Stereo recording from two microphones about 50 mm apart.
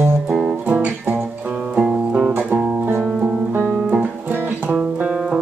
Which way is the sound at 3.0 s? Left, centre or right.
Centre.